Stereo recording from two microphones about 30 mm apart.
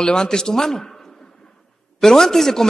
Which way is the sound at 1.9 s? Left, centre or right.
Centre.